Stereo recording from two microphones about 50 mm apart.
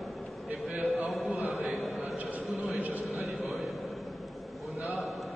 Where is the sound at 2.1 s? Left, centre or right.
Right.